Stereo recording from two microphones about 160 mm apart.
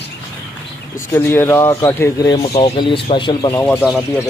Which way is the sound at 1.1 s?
15° left (ahead or behind).